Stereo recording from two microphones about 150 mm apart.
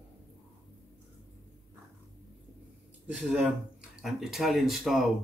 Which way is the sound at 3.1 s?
5° right (ahead or behind).